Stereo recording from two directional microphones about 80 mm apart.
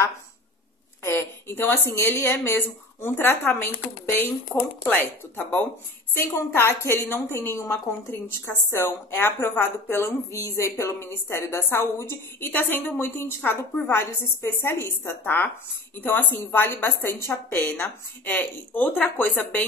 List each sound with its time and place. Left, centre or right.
1.0 s a woman's voice: left
4.6 s a woman's voice: left